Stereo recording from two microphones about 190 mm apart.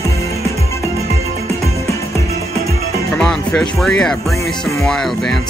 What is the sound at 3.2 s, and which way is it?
Music, 5° left (ahead or behind).